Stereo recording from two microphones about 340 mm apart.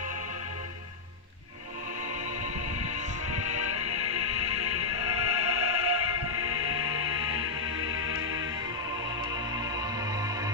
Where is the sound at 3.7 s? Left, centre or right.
Right.